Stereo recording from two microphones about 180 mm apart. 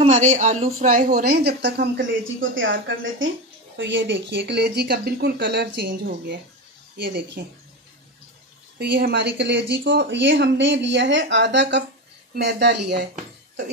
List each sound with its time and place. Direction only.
0.3 s a woman's voice: 45° right (ahead or behind); by 7.4 s 60° right (ahead or behind)
8.7 s a woman's voice: 70° right (ahead or behind)